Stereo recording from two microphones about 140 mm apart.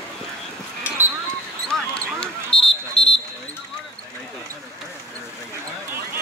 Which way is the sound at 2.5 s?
40° left (ahead or behind).